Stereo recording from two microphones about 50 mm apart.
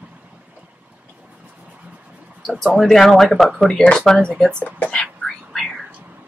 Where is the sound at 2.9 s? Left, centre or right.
Centre; by 5.1 s left.